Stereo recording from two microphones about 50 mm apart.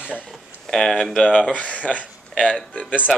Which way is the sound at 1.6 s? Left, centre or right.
Left.